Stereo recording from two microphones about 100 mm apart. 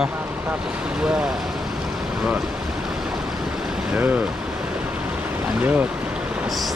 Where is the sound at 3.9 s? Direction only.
15° right (ahead or behind).